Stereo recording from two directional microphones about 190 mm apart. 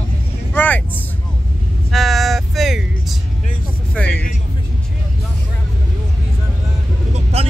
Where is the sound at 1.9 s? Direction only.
Centre (ahead or behind).